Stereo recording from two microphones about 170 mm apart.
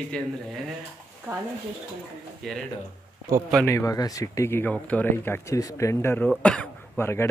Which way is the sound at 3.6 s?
15° left (ahead or behind).